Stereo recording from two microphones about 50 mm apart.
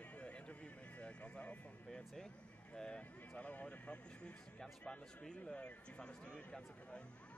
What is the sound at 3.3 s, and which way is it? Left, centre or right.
A man's voice, left.